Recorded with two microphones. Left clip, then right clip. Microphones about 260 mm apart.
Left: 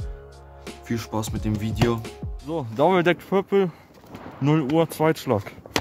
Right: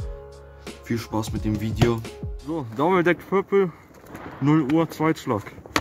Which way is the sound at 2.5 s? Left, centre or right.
Left.